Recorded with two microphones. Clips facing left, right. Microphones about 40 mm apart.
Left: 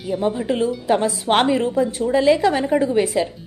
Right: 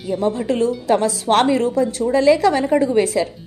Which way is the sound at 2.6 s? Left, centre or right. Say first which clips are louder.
Right 2 dB; centre.